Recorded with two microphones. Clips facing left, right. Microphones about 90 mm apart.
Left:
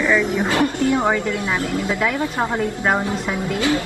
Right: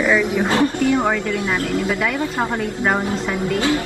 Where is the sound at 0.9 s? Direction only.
15° left (ahead or behind).